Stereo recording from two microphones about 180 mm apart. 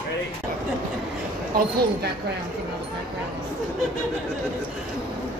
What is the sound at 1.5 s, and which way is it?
Speech, 55° right (ahead or behind).